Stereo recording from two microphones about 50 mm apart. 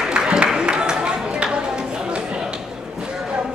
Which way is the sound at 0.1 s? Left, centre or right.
Centre.